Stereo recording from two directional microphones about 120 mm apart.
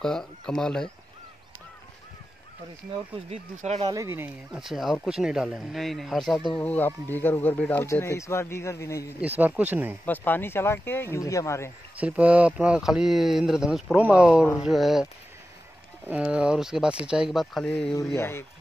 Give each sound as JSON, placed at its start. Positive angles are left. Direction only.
{"t": 0.0, "sound": "speech", "side_deg": 5}
{"t": 3.3, "sound": "speech", "side_deg": -70}
{"t": 3.9, "sound": "speech", "side_deg": -25}
{"t": 4.5, "sound": "speech", "side_deg": -5}
{"t": 6.6, "sound": "speech", "side_deg": 15}
{"t": 7.8, "sound": "speech", "side_deg": 25}
{"t": 9.2, "sound": "speech", "side_deg": -15}
{"t": 10.0, "sound": "speech", "side_deg": 15}
{"t": 12.0, "sound": "speech", "side_deg": -10}
{"t": 16.1, "sound": "speech", "side_deg": -10}
{"t": 17.9, "sound": "speech", "side_deg": 20}